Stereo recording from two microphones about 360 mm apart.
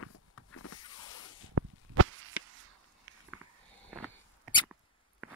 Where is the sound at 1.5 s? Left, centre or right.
Right.